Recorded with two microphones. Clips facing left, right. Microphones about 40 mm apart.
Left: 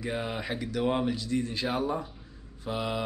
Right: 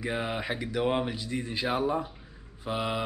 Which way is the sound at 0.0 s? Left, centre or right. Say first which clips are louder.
Right 1 dB; centre.